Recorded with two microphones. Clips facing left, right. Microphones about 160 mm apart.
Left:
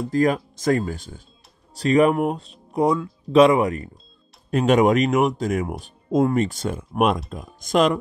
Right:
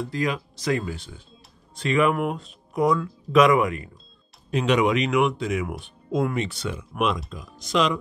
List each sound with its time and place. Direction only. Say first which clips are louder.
0.0 s speech: left 7 dB; 45° left (ahead or behind)
4.5 s speech: left 4 dB; 50° left (ahead or behind)